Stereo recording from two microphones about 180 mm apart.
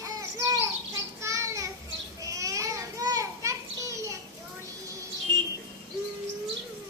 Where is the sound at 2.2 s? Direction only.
20° right (ahead or behind).